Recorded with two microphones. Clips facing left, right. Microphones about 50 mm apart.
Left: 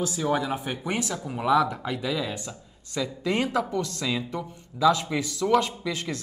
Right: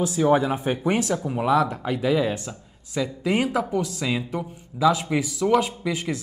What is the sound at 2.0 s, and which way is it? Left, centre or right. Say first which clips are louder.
A man's voice: right 10 dB; centre.